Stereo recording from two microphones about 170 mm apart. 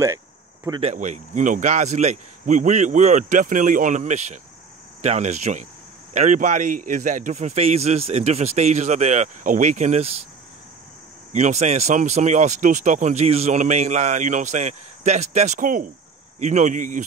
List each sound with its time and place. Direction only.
0.7 s speech: 40° right (ahead or behind)
11.3 s speech: 40° right (ahead or behind)